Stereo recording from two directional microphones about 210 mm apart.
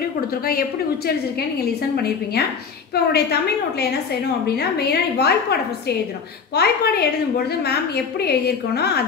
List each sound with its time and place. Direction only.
0.3 s a woman's voice: 45° left (ahead or behind)
2.9 s a woman's voice: 50° left (ahead or behind)